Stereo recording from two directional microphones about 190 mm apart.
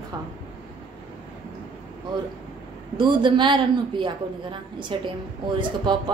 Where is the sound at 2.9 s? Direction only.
25° right (ahead or behind).